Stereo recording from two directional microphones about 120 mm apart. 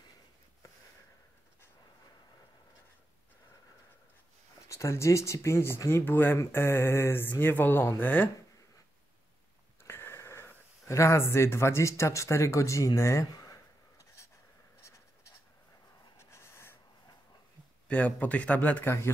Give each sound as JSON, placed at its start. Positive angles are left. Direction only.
{"t": 4.6, "sound": "speech", "side_deg": 25}
{"t": 9.8, "sound": "sniff", "side_deg": 20}
{"t": 16.2, "sound": "writing", "side_deg": 20}
{"t": 17.8, "sound": "speech", "side_deg": 10}